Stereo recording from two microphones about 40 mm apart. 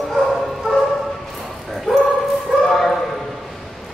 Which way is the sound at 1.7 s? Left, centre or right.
Centre.